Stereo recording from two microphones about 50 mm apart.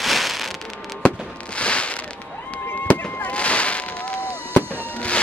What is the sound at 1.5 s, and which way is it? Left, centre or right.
Fireworks, left.